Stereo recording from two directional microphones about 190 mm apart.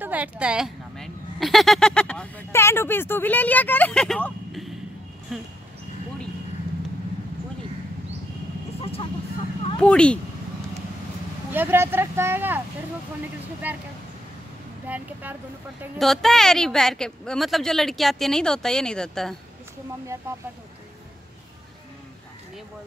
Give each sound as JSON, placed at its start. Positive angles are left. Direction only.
{"t": 0.0, "sound": "a woman's voice", "side_deg": -10}
{"t": 9.8, "sound": "a woman's voice", "side_deg": 5}
{"t": 11.5, "sound": "speech", "side_deg": -10}
{"t": 13.6, "sound": "speech", "side_deg": -10}
{"t": 14.9, "sound": "a woman's voice", "side_deg": -10}